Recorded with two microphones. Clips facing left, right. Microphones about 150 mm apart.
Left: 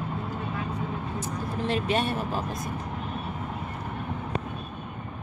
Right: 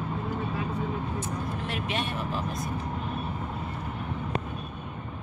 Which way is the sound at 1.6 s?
35° left (ahead or behind).